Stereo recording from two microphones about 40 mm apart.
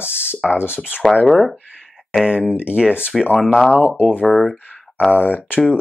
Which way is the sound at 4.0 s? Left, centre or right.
Left.